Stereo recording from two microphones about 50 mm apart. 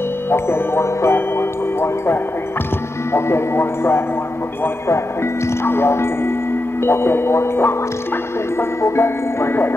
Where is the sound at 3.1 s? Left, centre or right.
Left.